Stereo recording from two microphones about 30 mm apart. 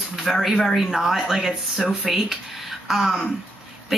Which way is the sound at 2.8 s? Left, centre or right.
Centre.